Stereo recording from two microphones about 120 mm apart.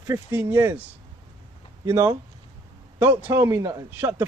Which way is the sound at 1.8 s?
20° right (ahead or behind).